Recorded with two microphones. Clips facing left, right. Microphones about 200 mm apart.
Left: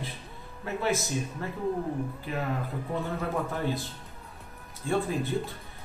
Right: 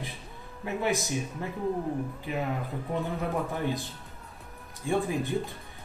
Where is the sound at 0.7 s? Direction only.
15° right (ahead or behind).